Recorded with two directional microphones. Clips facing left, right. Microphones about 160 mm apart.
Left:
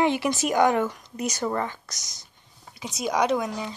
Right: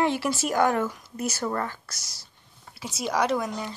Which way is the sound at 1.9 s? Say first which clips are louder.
Left 1 dB; 20° left (ahead or behind).